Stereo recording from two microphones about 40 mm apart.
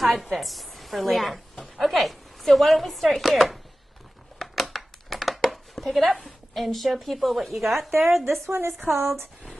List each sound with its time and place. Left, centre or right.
0.0 s chopping: centre
4.4 s crumpling: centre
6.5 s chopping: centre
8.5 s a woman's voice: right
8.7 s chopping: centre